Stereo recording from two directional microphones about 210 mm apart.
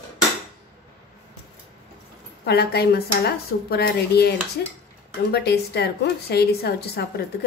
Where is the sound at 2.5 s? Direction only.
50° left (ahead or behind).